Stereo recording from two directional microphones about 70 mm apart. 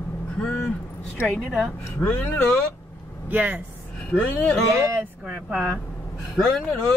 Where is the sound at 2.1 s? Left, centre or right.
Centre.